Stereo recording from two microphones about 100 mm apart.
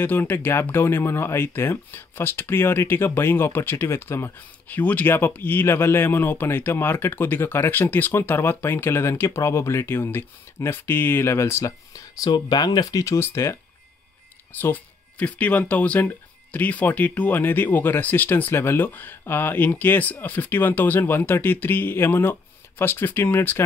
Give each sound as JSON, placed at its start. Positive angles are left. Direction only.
{"t": 0.0, "sound": "speech", "side_deg": 20}
{"t": 14.5, "sound": "speech", "side_deg": 20}